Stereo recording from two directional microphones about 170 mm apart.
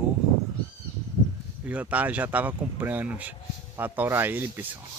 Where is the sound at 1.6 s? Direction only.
10° right (ahead or behind).